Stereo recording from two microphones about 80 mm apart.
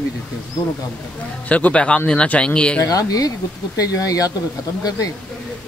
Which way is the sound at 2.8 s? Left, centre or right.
Left.